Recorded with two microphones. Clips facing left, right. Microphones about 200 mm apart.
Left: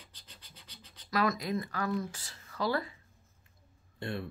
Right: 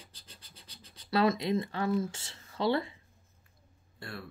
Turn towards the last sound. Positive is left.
turn(degrees=20)  # may be behind; listen again after turning